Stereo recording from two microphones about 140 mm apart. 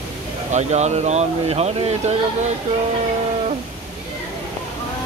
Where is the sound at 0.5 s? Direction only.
55° right (ahead or behind).